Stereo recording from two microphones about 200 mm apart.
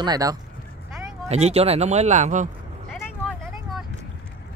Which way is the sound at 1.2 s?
30° right (ahead or behind).